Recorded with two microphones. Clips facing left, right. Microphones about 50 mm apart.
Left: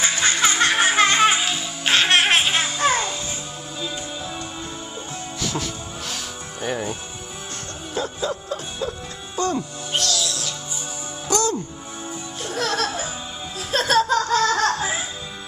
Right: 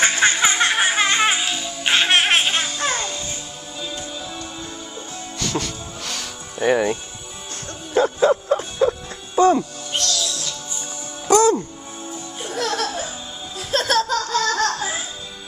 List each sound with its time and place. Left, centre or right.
0.0 s music: right
0.4 s music: centre
0.7 s music: centre
5.4 s music: centre
6.6 s speech: right
7.9 s music: right
9.9 s music: centre
11.2 s music: right
12.4 s music: centre
14.0 s music: centre